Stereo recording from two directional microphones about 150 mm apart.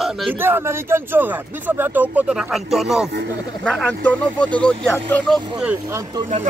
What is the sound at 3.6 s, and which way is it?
Speech, 10° left (ahead or behind).